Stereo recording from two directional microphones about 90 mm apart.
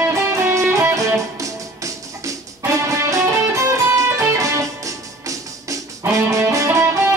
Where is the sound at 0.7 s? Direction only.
35° right (ahead or behind).